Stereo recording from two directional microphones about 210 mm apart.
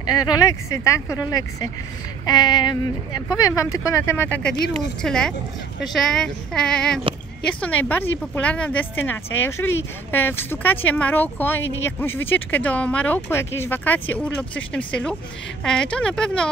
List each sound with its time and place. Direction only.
0.1 s speech: 20° left (ahead or behind)
2.2 s a sound: 20° left (ahead or behind)
3.3 s speech: 15° left (ahead or behind)